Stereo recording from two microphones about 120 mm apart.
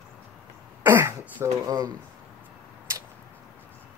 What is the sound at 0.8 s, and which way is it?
Throat clearing, 20° right (ahead or behind).